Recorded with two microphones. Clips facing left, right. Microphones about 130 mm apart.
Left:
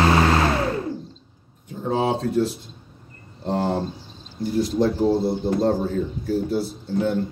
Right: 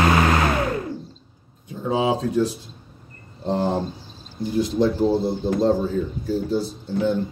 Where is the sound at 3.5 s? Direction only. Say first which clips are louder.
Right 1 dB; 80° left.